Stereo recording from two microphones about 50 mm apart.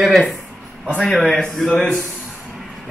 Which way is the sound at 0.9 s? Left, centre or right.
Left.